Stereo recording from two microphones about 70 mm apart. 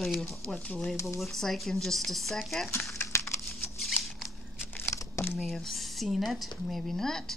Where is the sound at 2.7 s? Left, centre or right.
Left.